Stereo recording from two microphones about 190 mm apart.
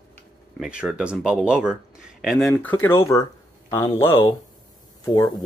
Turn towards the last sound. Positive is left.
turn(degrees=20)  # may be behind; listen again after turning